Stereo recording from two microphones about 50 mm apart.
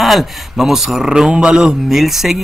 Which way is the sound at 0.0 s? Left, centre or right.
Centre.